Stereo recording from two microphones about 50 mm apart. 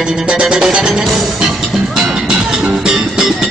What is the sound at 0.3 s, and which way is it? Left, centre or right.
Music, centre.